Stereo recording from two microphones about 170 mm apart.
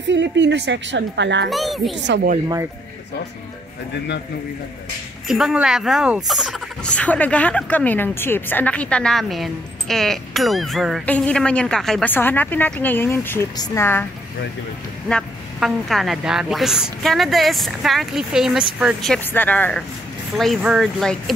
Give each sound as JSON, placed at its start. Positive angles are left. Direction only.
{"t": 0.1, "sound": "a woman's voice", "side_deg": -90}
{"t": 1.5, "sound": "speech", "side_deg": 0}
{"t": 2.0, "sound": "a woman's voice", "side_deg": -90}
{"t": 5.3, "sound": "speech", "side_deg": -5}
{"t": 15.0, "sound": "speech", "side_deg": 5}
{"t": 20.3, "sound": "speech", "side_deg": 0}